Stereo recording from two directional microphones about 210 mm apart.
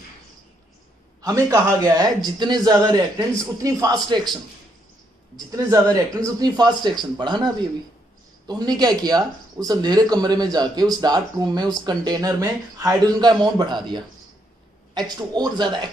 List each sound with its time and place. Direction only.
1.2 s a man's voice: 15° right (ahead or behind)
5.4 s a man's voice: 15° right (ahead or behind)